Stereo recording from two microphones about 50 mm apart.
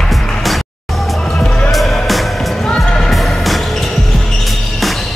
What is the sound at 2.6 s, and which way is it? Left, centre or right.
Music, centre.